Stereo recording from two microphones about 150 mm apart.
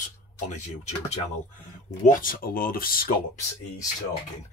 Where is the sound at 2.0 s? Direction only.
70° left (ahead or behind).